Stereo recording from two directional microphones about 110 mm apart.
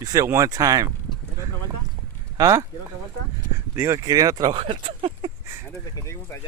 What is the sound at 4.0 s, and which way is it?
Speech, 35° right (ahead or behind).